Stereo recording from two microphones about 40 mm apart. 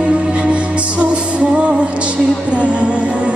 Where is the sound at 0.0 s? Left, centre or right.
Right.